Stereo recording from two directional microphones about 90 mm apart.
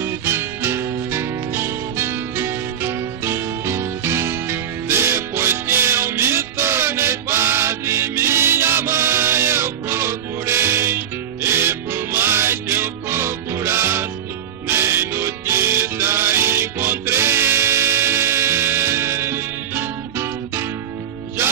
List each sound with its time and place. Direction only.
0.0 s music: 30° right (ahead or behind)